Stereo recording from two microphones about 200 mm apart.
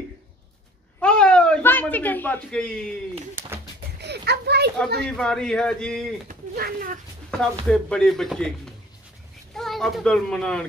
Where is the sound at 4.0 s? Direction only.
55° right (ahead or behind).